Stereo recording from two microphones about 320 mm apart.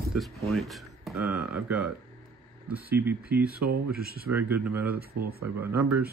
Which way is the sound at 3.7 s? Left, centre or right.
Right.